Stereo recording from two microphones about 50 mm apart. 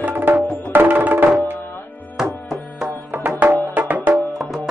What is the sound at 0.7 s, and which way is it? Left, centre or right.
Music, right.